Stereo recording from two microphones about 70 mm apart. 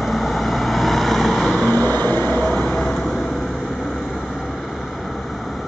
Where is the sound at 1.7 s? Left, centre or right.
Left.